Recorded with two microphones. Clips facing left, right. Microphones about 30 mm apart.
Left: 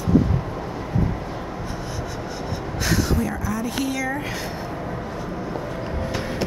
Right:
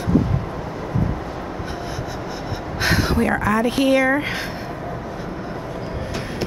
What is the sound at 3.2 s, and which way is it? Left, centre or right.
Speech, right.